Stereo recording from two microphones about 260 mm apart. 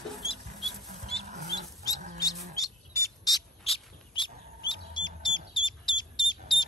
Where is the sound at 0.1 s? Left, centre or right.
Centre.